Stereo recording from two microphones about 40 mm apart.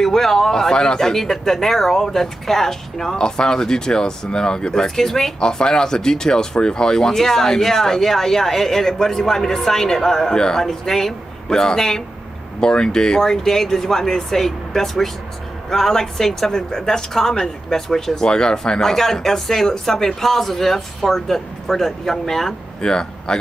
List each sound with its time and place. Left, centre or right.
0.0 s speech: centre
22.8 s speech: centre